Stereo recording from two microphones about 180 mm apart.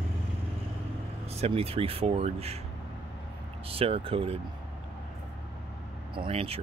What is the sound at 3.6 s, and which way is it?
Speech, 30° right (ahead or behind).